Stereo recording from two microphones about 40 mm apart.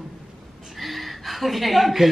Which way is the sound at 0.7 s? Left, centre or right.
Centre.